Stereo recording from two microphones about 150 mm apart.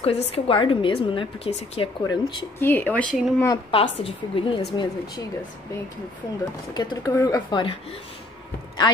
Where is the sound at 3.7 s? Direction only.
35° left (ahead or behind).